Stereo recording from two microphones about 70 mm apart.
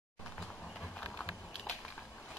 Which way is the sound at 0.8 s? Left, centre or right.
Centre.